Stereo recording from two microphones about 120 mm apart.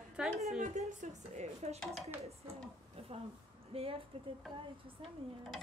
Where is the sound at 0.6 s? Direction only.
70° right (ahead or behind).